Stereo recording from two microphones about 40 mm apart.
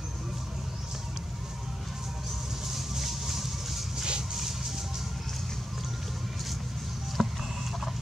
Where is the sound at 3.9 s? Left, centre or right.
Centre.